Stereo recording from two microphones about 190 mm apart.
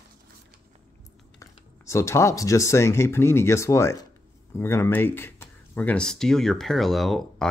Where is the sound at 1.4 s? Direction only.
15° left (ahead or behind).